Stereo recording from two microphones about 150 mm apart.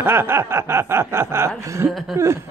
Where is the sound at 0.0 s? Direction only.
15° right (ahead or behind).